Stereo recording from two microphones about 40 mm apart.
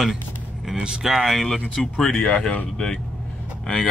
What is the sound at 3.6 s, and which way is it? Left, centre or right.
Speech, left.